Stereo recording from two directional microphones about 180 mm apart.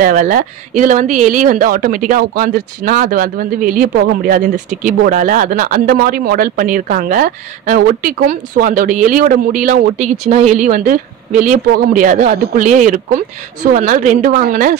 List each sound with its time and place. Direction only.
0.0 s speech: 50° right (ahead or behind)